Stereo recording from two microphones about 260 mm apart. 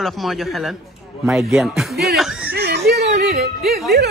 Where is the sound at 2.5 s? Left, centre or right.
Right.